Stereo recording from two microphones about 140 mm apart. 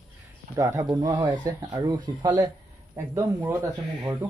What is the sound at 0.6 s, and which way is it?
Speech, 25° right (ahead or behind).